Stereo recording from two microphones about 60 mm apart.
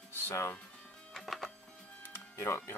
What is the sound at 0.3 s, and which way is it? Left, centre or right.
Speech, left.